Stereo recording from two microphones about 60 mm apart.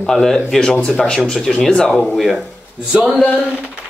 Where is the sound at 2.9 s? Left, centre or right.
Centre.